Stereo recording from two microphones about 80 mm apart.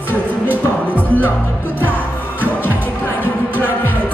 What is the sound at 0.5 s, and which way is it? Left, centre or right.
Music, right.